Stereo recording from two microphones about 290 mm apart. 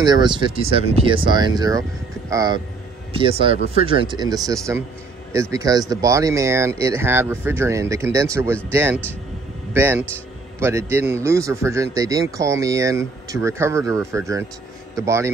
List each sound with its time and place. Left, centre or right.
0.0 s speech: centre
9.8 s speech: centre